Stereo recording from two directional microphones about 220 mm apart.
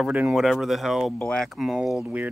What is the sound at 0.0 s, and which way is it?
Speech, 5° right (ahead or behind).